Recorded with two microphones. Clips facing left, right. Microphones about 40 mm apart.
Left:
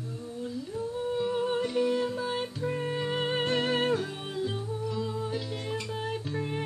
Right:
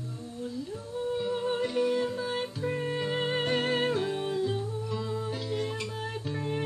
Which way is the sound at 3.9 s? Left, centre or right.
Right.